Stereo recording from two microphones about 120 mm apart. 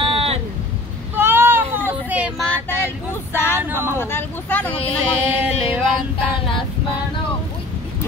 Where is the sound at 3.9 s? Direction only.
15° left (ahead or behind).